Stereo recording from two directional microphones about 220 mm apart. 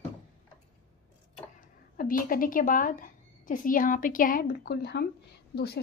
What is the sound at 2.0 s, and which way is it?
A woman's voice, 40° left (ahead or behind).